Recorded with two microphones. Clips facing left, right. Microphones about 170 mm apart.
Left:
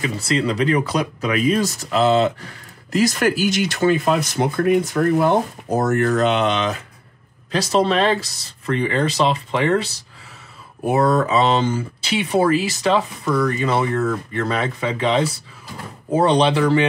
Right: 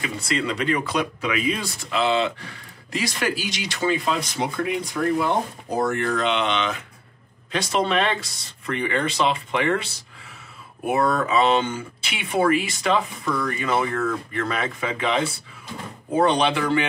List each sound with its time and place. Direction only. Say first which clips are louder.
0.3 s speech: left 5 dB; 35° left (ahead or behind)
8.3 s speech: left 1 dB; centre (ahead or behind)
8.6 s speech: left 4 dB; 35° left (ahead or behind)
10.9 s speech: left 4 dB; 35° left (ahead or behind)